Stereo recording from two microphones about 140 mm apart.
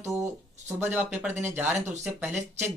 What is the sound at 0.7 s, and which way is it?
Speech, 15° right (ahead or behind).